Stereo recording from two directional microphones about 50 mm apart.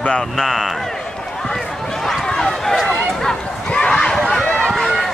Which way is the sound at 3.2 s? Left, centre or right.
Centre.